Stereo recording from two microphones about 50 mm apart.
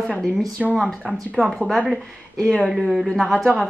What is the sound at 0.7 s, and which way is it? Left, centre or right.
Speech, centre.